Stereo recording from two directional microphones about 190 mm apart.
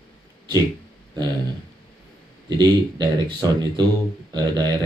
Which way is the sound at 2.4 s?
20° right (ahead or behind).